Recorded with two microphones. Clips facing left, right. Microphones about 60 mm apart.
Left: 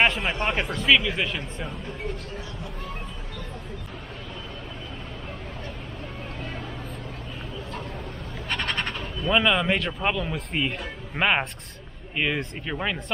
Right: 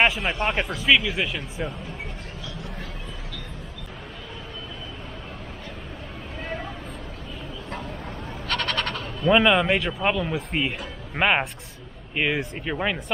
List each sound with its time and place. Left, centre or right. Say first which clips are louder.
0.0 s speech: right 1 dB; centre
8.5 s crow: right 2 dB; centre
9.3 s speech: right 3 dB; centre